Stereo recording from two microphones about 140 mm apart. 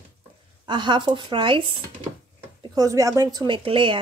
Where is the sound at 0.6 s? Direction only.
35° right (ahead or behind).